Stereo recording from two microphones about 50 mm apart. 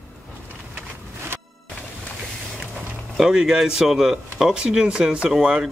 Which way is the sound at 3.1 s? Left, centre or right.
Centre.